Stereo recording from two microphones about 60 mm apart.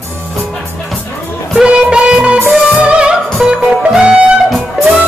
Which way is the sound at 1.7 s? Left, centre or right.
Centre.